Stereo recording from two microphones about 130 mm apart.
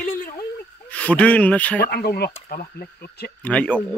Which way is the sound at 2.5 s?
90° left.